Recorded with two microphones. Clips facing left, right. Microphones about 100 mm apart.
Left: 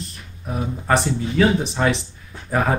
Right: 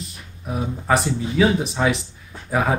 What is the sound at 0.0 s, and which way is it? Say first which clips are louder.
Speech: left 1 dB; centre (ahead or behind).